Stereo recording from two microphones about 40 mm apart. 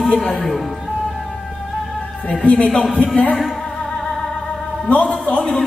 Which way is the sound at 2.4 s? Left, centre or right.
Left.